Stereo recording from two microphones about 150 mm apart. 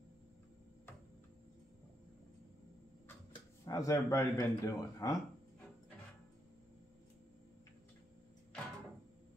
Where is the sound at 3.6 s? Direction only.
20° left (ahead or behind).